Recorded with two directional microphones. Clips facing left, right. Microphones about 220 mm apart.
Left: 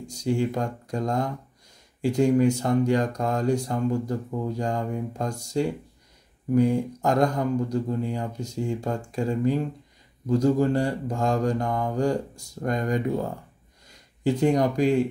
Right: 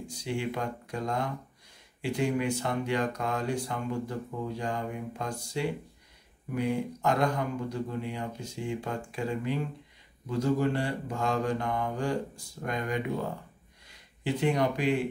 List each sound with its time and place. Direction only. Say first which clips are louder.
0.0 s speech: left 8 dB; 40° left (ahead or behind)